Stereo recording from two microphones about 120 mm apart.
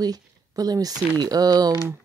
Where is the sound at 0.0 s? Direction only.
30° right (ahead or behind).